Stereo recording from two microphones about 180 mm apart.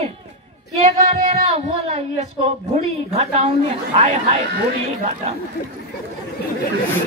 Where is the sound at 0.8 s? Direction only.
35° right (ahead or behind).